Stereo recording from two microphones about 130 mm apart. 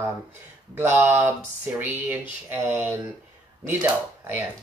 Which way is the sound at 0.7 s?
20° right (ahead or behind).